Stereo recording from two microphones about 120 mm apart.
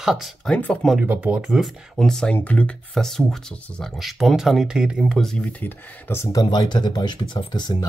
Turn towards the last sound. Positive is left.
turn(degrees=35)  # may be behind; listen again after turning